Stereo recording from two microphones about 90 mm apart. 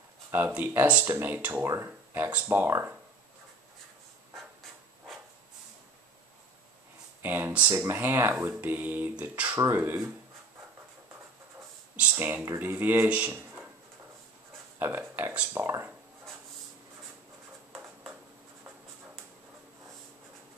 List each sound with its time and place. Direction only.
0.3 s speech: 20° right (ahead or behind)
7.2 s speech: 25° right (ahead or behind)
12.0 s a sound: 20° right (ahead or behind)
12.5 s speech: 20° right (ahead or behind)
14.8 s speech: 25° right (ahead or behind)